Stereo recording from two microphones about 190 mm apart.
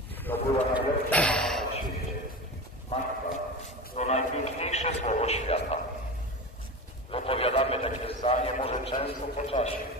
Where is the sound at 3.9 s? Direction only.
35° left (ahead or behind).